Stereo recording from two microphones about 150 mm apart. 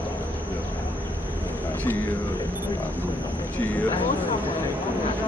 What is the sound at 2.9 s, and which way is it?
Speech, 10° left (ahead or behind).